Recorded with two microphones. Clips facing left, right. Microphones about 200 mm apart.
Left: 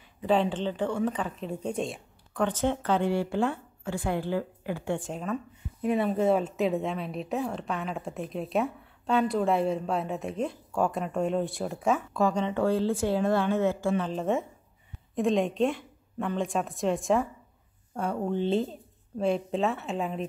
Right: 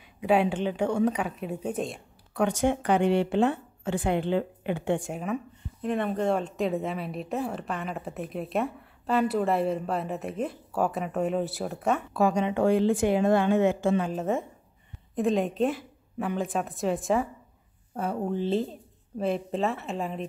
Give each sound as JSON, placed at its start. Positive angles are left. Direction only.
{"t": 0.2, "sound": "a woman's voice", "side_deg": -10}
{"t": 2.4, "sound": "a woman's voice", "side_deg": -15}
{"t": 5.8, "sound": "speech", "side_deg": 5}
{"t": 14.1, "sound": "speech", "side_deg": 0}